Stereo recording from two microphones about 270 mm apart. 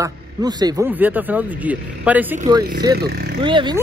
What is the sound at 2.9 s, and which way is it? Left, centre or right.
Speech, right.